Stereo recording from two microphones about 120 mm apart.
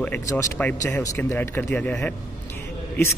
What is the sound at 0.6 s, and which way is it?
A man's voice, 15° left (ahead or behind).